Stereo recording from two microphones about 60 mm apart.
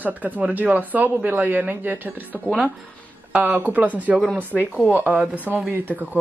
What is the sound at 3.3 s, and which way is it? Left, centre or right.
Speech, right.